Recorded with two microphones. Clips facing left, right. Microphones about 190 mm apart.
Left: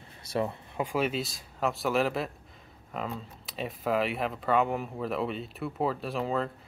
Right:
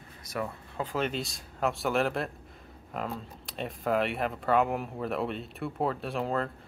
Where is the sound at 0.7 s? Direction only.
10° left (ahead or behind).